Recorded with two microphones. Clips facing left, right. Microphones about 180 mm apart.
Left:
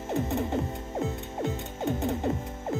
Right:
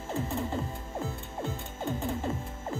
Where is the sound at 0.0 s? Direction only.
20° left (ahead or behind).